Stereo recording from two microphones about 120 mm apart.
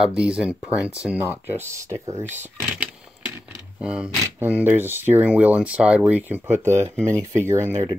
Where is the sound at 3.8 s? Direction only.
10° right (ahead or behind).